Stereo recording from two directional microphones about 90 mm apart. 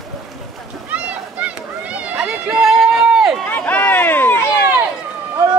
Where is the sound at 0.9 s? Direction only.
15° right (ahead or behind).